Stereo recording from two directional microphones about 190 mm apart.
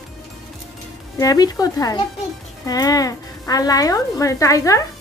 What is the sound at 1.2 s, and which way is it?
A woman's voice, 20° left (ahead or behind).